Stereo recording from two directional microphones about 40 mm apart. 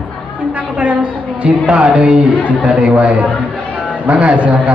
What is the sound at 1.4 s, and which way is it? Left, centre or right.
A man's voice, right.